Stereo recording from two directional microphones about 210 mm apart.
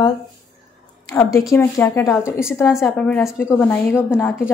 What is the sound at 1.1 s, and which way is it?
A woman's voice, 15° left (ahead or behind).